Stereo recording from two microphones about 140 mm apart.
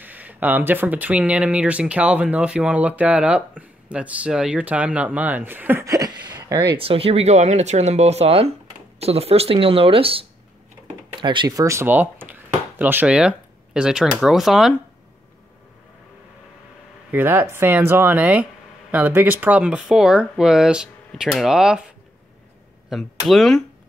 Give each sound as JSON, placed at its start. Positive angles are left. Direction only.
{"t": 0.0, "sound": "speech", "side_deg": -10}
{"t": 17.1, "sound": "speech", "side_deg": -15}
{"t": 22.8, "sound": "speech", "side_deg": 0}